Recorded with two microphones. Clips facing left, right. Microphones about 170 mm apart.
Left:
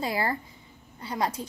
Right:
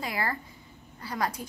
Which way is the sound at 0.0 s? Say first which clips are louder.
Left 4 dB; 30° left (ahead or behind).